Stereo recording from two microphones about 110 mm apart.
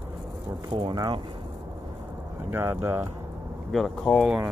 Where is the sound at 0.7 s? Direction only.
45° right (ahead or behind).